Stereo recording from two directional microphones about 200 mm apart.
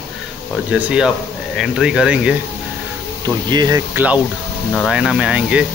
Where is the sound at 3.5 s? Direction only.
20° right (ahead or behind).